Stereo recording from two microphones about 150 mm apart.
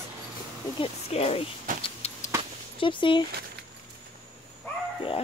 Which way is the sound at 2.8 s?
35° left (ahead or behind).